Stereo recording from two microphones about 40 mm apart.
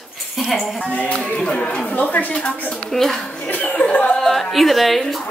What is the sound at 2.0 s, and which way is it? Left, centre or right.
Speech, left.